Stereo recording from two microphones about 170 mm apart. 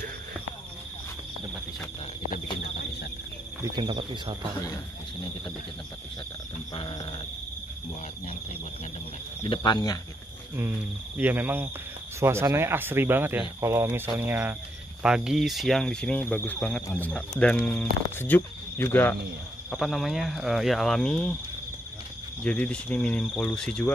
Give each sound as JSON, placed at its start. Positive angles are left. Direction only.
{"t": 3.7, "sound": "speech", "side_deg": -25}
{"t": 6.7, "sound": "speech", "side_deg": 30}
{"t": 9.4, "sound": "speech", "side_deg": 30}
{"t": 11.1, "sound": "speech", "side_deg": -10}
{"t": 19.7, "sound": "speech", "side_deg": 0}
{"t": 22.4, "sound": "speech", "side_deg": 5}